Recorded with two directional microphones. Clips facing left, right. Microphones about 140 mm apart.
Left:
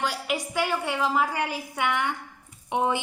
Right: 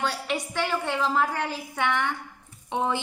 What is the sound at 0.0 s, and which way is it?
Speech, 10° left (ahead or behind).